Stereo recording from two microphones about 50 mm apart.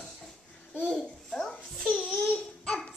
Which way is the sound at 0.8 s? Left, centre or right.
Centre.